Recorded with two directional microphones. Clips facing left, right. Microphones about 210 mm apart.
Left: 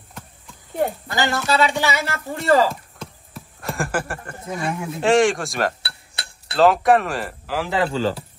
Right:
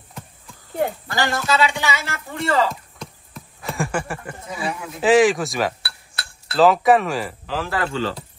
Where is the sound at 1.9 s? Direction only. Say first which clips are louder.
Left 3 dB; 40° left (ahead or behind).